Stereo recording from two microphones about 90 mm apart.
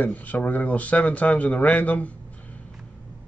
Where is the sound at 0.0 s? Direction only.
20° left (ahead or behind).